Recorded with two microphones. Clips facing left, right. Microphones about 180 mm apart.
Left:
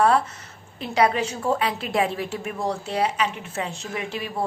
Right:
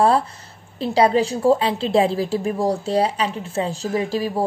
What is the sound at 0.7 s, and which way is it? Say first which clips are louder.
A woman's voice: right 5 dB; 30° right (ahead or behind).